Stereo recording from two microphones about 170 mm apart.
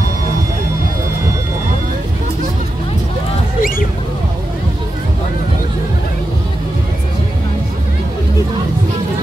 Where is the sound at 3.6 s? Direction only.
55° left (ahead or behind).